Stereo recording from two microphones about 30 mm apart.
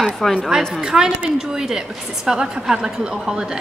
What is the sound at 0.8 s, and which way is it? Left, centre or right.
A woman's voice, right.